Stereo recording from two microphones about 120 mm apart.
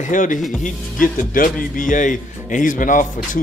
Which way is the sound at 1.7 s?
90° left.